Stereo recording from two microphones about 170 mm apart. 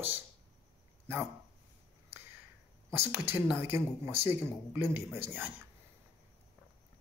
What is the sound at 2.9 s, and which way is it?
Speech, 15° right (ahead or behind).